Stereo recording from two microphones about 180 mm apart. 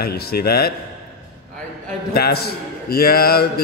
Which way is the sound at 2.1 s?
60° left (ahead or behind).